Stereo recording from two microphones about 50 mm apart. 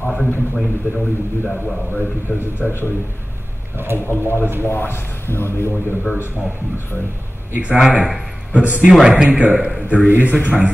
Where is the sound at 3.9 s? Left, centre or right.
Left.